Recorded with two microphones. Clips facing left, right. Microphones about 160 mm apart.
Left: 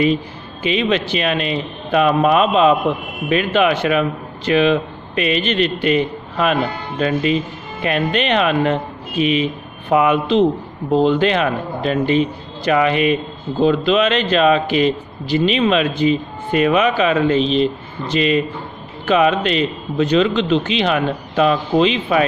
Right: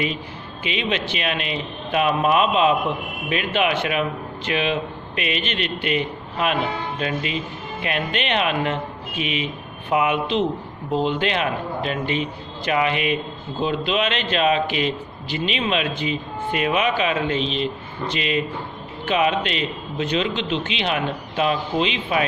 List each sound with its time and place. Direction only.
0.7 s a man's voice: 40° left (ahead or behind)